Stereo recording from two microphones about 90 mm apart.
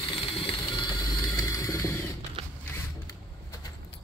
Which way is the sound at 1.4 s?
35° left (ahead or behind).